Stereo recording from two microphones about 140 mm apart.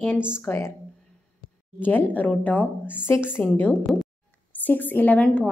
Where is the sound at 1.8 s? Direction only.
15° left (ahead or behind).